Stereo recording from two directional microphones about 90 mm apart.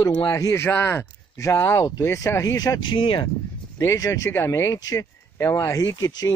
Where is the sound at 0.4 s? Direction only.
30° left (ahead or behind).